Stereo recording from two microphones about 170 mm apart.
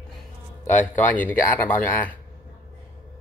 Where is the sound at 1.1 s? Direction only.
10° left (ahead or behind).